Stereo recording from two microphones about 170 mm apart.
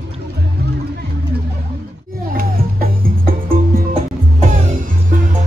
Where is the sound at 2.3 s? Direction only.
60° right (ahead or behind).